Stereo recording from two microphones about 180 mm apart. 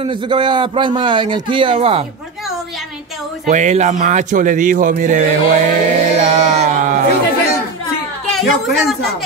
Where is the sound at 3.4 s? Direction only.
40° right (ahead or behind).